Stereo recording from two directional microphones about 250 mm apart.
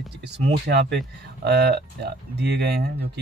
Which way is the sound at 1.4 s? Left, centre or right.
Right.